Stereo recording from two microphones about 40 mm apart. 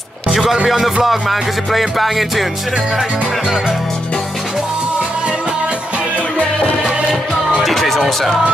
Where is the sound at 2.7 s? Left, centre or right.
Centre.